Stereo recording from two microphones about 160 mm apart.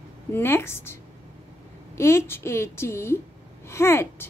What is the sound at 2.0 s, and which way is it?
A woman's voice, 15° left (ahead or behind).